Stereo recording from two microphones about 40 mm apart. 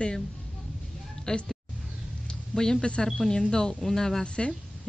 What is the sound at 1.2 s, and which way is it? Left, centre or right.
Speech, centre.